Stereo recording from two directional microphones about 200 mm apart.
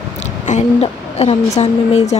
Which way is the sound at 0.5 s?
35° left (ahead or behind).